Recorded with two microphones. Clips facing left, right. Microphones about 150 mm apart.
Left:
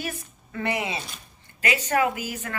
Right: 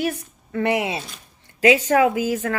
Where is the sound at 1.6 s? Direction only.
90° right.